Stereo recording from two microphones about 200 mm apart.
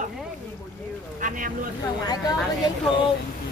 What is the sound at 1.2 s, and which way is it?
Speech, 40° right (ahead or behind).